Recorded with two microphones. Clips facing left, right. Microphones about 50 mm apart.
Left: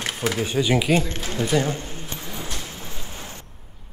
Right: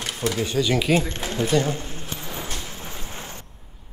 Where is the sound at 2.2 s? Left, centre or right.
Right.